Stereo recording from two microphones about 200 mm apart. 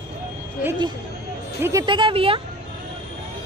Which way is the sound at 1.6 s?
15° right (ahead or behind).